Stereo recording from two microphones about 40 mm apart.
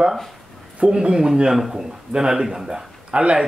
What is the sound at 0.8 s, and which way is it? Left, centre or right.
A man's voice, right.